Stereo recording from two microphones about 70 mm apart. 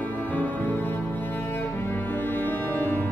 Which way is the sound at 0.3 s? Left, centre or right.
Left.